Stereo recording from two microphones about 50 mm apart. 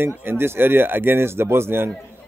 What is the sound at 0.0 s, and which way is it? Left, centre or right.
A man's voice, right.